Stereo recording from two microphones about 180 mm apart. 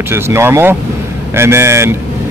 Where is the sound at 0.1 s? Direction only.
15° right (ahead or behind).